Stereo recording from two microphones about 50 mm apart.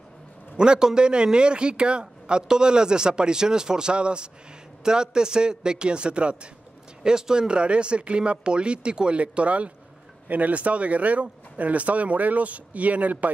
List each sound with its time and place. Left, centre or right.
0.6 s a man's voice: centre; by 13.3 s right